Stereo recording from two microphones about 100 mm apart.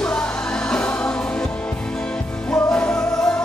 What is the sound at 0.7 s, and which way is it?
Music, 10° left (ahead or behind).